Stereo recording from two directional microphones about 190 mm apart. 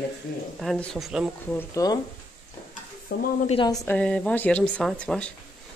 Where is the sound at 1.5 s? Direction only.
15° left (ahead or behind).